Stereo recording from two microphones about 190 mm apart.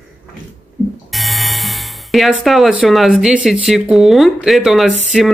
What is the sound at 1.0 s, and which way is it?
Speech, centre (ahead or behind).